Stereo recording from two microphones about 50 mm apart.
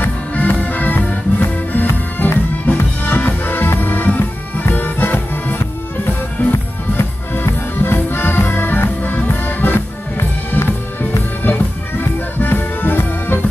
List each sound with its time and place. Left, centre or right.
0.0 s music: left